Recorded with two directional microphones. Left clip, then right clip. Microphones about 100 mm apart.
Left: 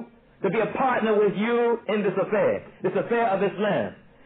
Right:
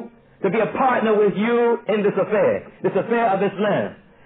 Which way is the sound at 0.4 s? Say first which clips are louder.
Right 4 dB; 30° left (ahead or behind).